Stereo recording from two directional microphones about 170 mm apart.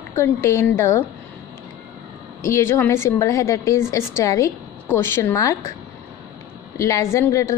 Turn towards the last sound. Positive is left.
turn(degrees=15)  # may be behind; listen again after turning